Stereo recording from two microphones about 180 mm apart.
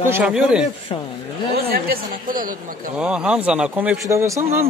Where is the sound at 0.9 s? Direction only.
25° left (ahead or behind).